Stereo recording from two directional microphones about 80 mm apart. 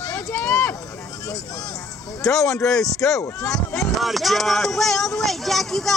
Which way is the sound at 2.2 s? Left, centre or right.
Centre.